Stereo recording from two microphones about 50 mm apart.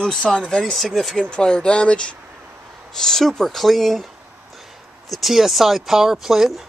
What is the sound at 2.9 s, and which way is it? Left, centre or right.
Speech, centre.